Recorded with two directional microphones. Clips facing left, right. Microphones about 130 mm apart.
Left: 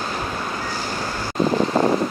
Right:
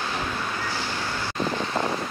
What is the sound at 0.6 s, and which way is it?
Vehicle, 40° left (ahead or behind).